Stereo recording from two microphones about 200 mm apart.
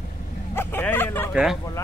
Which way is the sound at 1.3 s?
5° right (ahead or behind).